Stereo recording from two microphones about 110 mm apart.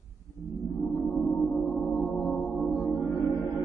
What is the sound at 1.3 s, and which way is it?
Gong, 10° left (ahead or behind).